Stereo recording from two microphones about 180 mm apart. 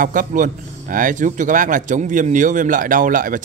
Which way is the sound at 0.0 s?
45° right (ahead or behind).